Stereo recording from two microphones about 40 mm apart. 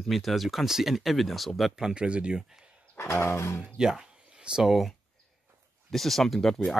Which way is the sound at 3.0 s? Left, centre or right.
Left.